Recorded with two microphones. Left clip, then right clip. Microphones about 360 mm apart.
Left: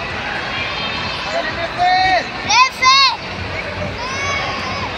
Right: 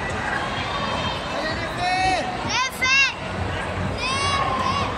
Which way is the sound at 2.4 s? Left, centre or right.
Centre.